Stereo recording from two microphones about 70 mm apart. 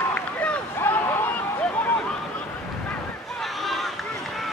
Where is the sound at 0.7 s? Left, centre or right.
Left.